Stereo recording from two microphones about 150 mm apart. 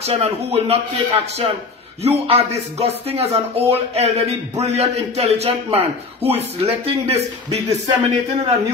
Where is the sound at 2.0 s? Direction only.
45° right (ahead or behind).